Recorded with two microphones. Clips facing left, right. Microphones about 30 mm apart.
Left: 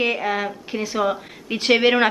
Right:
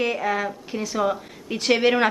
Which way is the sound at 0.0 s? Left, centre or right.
Left.